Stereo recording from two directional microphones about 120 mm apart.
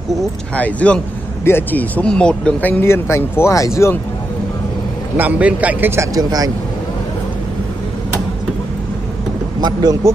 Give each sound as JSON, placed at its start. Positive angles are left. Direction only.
{"t": 0.6, "sound": "speech", "side_deg": 10}
{"t": 5.1, "sound": "a man's voice", "side_deg": -15}
{"t": 9.6, "sound": "speech", "side_deg": -35}